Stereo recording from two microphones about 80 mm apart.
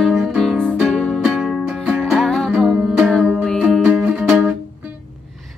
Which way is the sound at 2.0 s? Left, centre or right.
Centre.